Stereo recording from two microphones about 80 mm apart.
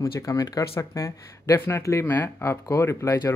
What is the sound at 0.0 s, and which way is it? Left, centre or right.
Speech, left.